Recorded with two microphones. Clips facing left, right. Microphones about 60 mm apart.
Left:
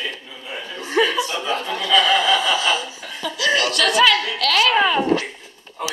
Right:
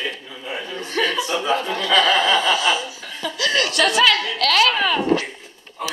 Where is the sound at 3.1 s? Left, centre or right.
Centre.